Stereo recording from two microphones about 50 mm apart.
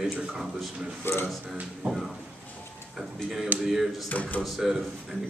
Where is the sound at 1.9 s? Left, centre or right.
Centre.